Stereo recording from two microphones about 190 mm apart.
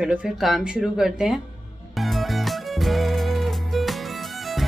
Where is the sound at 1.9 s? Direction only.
Centre (ahead or behind).